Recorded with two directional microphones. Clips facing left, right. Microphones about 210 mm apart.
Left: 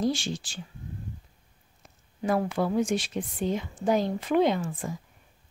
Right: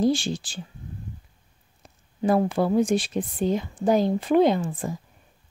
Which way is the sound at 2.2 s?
35° right (ahead or behind).